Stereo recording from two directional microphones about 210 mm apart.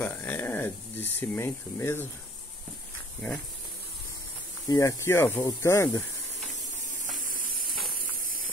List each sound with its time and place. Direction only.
0.0 s speech: 10° left (ahead or behind)
4.6 s speech: 15° left (ahead or behind)
7.1 s a sound: 40° right (ahead or behind)